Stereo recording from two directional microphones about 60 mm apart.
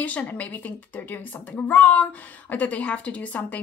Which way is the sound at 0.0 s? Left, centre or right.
Left.